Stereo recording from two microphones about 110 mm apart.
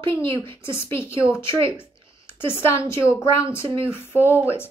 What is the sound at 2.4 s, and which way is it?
A woman's voice, 20° left (ahead or behind).